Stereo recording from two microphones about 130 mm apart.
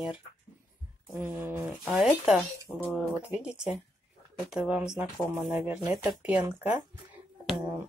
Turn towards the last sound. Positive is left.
turn(degrees=-15)  # may be behind; listen again after turning